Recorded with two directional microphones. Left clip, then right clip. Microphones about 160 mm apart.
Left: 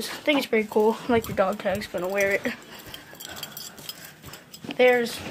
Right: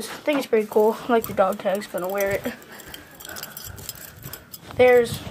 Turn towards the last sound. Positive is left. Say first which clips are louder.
# right 4 dB
turn(degrees=0)  # may be behind; listen again after turning